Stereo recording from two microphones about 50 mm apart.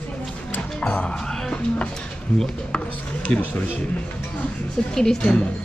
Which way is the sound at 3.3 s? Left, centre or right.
Left.